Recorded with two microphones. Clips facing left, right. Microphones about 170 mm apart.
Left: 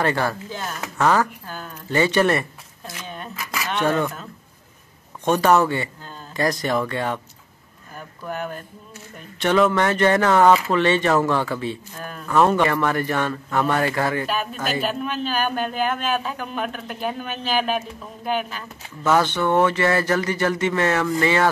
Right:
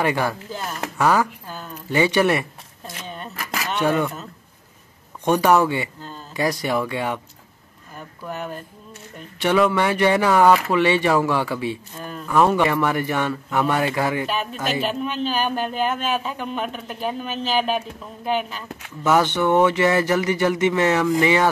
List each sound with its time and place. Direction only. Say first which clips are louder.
0.0 s speech: even; 10° right (ahead or behind)
3.7 s a man's voice: right 1 dB; 10° right (ahead or behind)
8.2 s speech: left 1 dB; centre (ahead or behind)
12.0 s a sound: right 2 dB; centre (ahead or behind)
12.4 s speech: even; 5° right (ahead or behind)
14.2 s speech: even; centre (ahead or behind)
19.0 s speech: right 1 dB; 15° right (ahead or behind)